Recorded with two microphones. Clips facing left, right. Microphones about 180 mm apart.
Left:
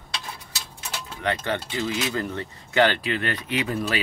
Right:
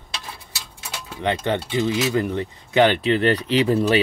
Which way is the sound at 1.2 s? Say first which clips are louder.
Right 4 dB; 20° right (ahead or behind).